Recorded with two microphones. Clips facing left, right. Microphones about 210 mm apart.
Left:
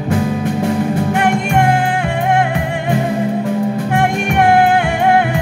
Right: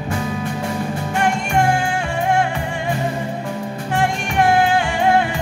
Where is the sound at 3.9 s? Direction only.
60° left (ahead or behind).